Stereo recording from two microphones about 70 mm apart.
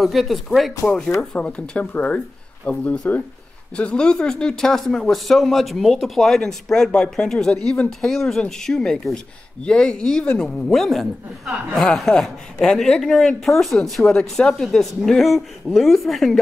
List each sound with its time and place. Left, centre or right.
0.0 s a woman's voice: centre
1.3 s a woman's voice: centre